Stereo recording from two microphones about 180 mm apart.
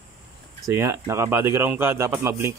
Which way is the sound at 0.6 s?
15° right (ahead or behind).